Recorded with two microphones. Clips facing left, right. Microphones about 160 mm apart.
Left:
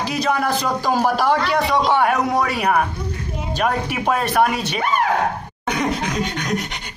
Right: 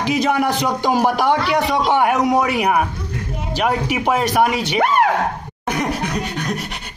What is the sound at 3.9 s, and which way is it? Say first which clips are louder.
Speech: right 1 dB; 15° right (ahead or behind).